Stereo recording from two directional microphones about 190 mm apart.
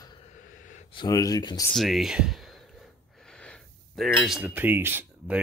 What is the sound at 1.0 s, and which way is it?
Speech, 20° left (ahead or behind).